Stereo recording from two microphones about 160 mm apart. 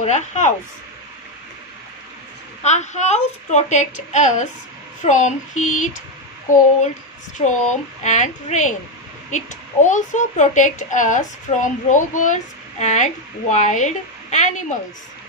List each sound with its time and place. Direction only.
0.0 s a child's voice: 45° left (ahead or behind)
2.6 s a child's voice: 45° left (ahead or behind)
7.3 s a child's voice: 50° left (ahead or behind)
9.8 s a child's voice: 50° left (ahead or behind)